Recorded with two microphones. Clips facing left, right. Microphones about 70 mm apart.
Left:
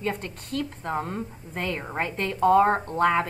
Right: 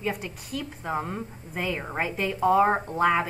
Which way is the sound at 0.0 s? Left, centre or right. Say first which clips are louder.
Left 1 dB; centre.